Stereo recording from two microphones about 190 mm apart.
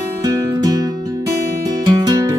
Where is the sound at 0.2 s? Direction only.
20° right (ahead or behind).